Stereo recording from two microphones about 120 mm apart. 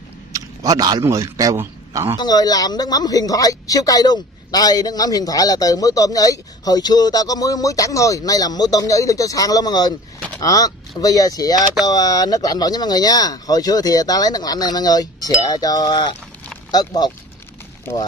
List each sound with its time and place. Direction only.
0.3 s a man's voice: 30° right (ahead or behind)
2.1 s speech: 35° left (ahead or behind)